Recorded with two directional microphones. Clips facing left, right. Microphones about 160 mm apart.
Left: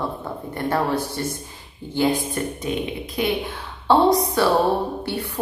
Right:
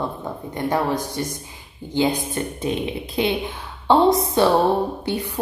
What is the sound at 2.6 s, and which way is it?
A woman's voice, 30° right (ahead or behind).